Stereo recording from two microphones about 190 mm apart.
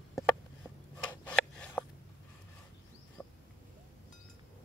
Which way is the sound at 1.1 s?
5° left (ahead or behind).